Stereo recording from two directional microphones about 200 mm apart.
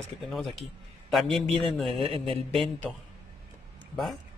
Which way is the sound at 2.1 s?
30° right (ahead or behind).